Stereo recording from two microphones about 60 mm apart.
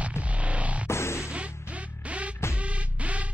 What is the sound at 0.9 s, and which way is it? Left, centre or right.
Music, left.